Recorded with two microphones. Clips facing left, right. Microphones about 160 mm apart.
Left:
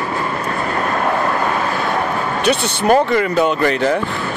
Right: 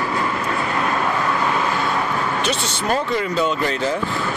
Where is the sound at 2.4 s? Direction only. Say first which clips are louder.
Left 6 dB; 60° left (ahead or behind).